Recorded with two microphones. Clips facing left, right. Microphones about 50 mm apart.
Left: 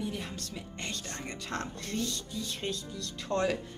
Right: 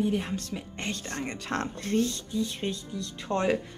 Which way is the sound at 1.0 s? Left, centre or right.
Right.